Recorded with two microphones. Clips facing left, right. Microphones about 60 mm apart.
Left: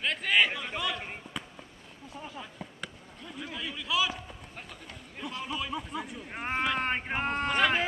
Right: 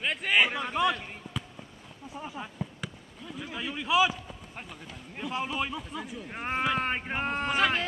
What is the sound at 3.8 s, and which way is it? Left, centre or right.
Speech, right.